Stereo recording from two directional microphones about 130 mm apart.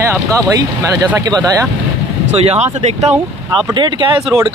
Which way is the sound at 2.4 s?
55° right (ahead or behind).